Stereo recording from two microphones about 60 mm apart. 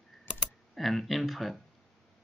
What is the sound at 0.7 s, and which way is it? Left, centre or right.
Speech, centre.